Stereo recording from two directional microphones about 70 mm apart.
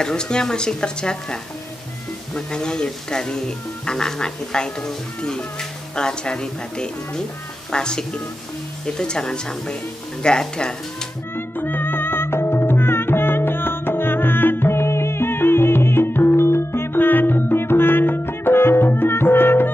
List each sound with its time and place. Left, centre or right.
0.0 s speech: centre
11.3 s music: left